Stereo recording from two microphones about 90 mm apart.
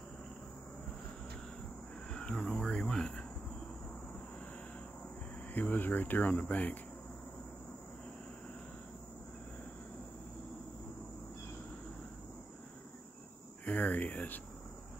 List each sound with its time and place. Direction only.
2.0 s cricket: 10° left (ahead or behind)
5.5 s cricket: 20° left (ahead or behind)
13.7 s a sound: 15° left (ahead or behind)